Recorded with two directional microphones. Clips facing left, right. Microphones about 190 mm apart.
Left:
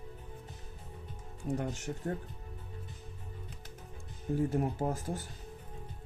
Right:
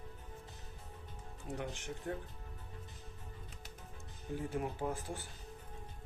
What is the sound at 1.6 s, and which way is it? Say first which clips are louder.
Speech: left 6 dB; 40° left (ahead or behind).